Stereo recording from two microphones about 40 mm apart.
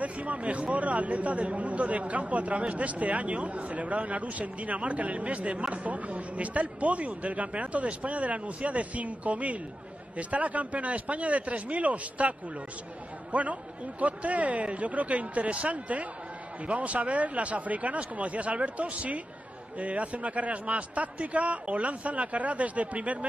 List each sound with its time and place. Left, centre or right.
0.0 s speech: right